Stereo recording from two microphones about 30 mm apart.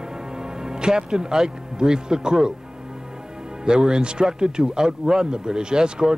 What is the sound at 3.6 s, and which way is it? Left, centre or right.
Speech, right.